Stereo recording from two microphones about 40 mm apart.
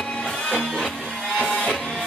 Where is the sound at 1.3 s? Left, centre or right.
Left.